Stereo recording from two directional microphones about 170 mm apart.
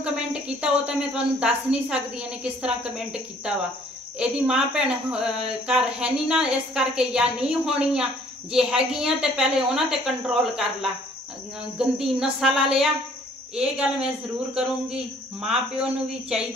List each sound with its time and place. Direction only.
0.0 s speech: 5° right (ahead or behind)